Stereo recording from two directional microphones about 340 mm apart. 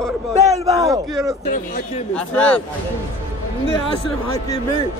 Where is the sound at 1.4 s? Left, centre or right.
Left.